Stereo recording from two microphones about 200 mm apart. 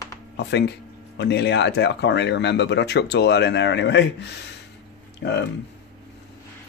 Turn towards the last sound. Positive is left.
turn(degrees=60)  # may be behind; listen again after turning